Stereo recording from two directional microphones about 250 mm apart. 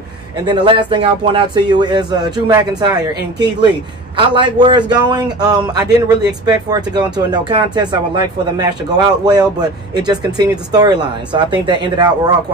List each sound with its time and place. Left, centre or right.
0.5 s a man's voice: centre